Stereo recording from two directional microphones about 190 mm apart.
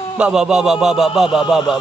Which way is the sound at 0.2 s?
5° right (ahead or behind).